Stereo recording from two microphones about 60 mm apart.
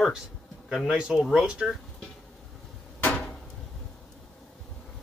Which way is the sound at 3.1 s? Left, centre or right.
Centre.